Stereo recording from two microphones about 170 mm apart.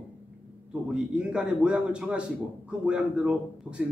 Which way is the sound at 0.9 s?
5° right (ahead or behind).